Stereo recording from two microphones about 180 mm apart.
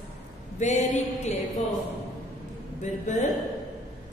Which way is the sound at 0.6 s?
40° left (ahead or behind).